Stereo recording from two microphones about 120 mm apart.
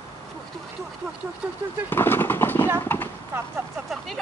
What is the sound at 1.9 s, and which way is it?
Bird, 20° left (ahead or behind).